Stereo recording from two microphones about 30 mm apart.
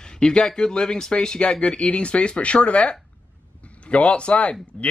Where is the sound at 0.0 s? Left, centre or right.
Left.